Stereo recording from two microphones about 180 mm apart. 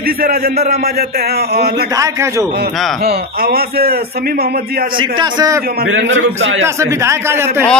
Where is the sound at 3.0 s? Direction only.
60° right (ahead or behind).